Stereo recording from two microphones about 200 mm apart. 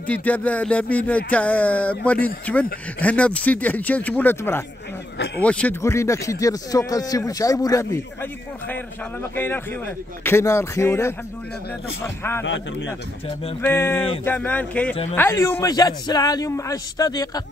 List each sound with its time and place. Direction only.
0.0 s speech: 5° left (ahead or behind)
9.3 s speech: 10° left (ahead or behind)
13.6 s speech: 10° left (ahead or behind)